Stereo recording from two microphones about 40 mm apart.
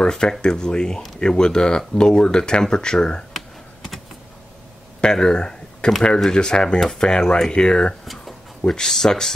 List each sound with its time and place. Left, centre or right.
0.0 s speech: centre
3.3 s computer keyboard: centre
5.0 s a sound: centre
6.2 s speech: centre
8.0 s a sound: centre
8.6 s speech: centre